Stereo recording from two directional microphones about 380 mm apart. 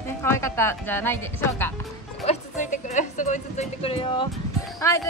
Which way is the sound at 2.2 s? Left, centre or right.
Centre.